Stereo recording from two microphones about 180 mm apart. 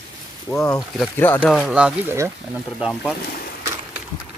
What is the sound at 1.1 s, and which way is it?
Speech, 10° left (ahead or behind).